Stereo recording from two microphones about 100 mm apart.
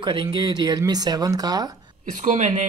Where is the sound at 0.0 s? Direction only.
50° right (ahead or behind).